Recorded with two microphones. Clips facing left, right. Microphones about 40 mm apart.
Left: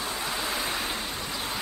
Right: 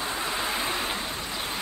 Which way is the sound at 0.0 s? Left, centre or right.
Centre.